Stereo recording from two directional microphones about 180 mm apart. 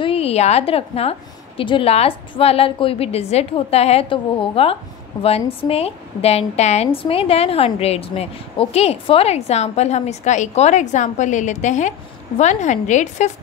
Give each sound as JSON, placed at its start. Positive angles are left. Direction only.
{"t": 0.0, "sound": "a woman's voice", "side_deg": 35}